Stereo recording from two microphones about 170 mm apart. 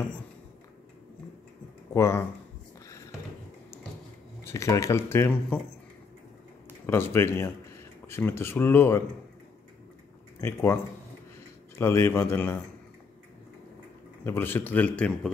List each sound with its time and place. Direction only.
2.0 s speech: 15° left (ahead or behind)
4.5 s speech: 15° left (ahead or behind)
6.9 s speech: 15° left (ahead or behind)
10.4 s speech: 15° left (ahead or behind)
14.2 s speech: 15° left (ahead or behind)